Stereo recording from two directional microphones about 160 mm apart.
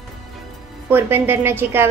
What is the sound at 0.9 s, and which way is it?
A woman's voice, 15° right (ahead or behind).